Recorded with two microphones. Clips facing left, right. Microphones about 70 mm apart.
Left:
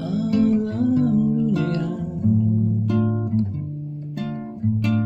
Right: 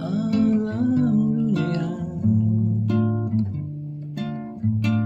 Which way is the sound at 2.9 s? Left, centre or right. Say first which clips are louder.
Even; centre.